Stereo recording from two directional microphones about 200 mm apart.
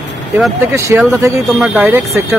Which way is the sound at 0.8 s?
15° right (ahead or behind).